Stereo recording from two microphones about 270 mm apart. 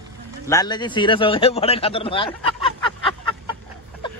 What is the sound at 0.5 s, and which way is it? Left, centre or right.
A man's voice, centre.